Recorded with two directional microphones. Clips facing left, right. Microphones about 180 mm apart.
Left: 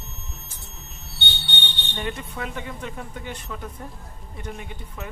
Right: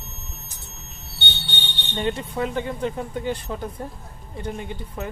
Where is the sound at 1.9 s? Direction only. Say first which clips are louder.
Right 6 dB; 30° right (ahead or behind).